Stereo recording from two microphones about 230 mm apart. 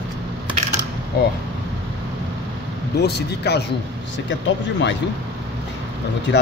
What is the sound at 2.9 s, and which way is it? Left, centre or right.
A man's voice, left.